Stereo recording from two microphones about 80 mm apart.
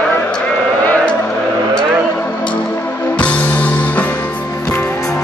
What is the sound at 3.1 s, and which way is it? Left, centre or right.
Music, centre.